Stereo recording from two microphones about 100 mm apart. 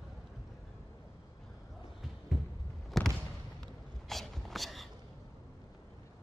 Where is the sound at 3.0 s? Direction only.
Centre (ahead or behind).